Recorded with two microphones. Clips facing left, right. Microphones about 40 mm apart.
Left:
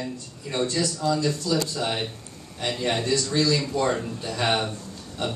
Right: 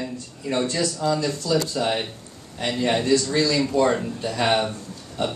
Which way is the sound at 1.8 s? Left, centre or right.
Right.